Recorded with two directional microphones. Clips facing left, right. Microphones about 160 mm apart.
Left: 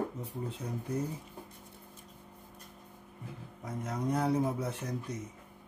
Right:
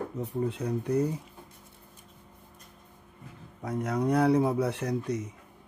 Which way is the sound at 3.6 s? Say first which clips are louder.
Right 7 dB; 70° right (ahead or behind).